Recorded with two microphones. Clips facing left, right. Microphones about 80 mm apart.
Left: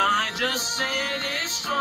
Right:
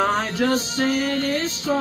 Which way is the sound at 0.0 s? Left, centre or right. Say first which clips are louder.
Right 2 dB; right.